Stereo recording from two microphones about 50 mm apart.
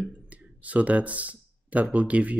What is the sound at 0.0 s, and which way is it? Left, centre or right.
Speech, right.